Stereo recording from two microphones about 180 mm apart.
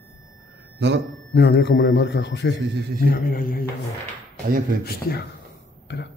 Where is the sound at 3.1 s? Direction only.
50° left (ahead or behind).